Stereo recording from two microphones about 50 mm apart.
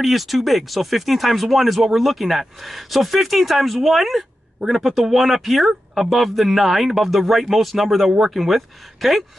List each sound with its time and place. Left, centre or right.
0.0 s speech: centre